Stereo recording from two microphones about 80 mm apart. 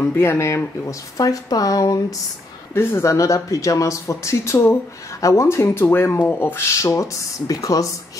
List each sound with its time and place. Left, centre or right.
0.1 s speech: left
0.8 s speech: left
2.7 s speech: left